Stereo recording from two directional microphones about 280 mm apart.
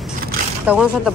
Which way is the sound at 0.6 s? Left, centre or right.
Centre.